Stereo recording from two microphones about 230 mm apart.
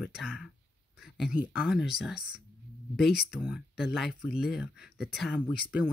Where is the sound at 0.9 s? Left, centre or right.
Centre.